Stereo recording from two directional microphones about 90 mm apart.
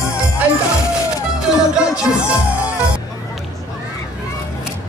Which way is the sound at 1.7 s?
10° right (ahead or behind).